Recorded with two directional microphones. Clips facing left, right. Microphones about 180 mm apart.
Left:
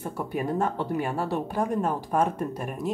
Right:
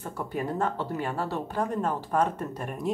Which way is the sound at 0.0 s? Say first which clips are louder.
Left 2 dB; 10° left (ahead or behind).